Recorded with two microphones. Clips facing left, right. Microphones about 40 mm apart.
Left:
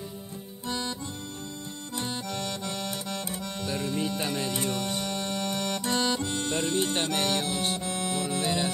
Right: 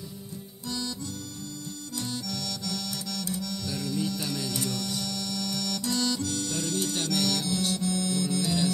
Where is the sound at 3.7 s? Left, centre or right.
Left.